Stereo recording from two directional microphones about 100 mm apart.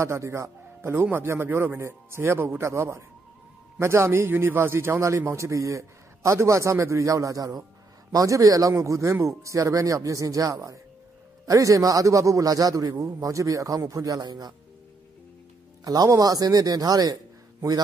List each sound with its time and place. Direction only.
0.0 s a man's voice: 30° right (ahead or behind)
15.8 s a man's voice: 35° right (ahead or behind)